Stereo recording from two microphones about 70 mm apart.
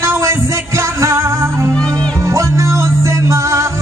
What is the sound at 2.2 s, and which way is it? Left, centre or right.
Music, right.